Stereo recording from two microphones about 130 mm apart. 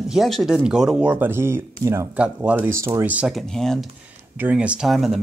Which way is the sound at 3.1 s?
5° right (ahead or behind).